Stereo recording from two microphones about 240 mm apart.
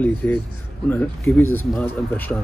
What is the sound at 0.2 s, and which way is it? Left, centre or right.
Speech, centre.